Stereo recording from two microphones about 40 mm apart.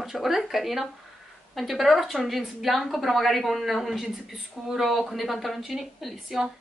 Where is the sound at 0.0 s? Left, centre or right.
Centre.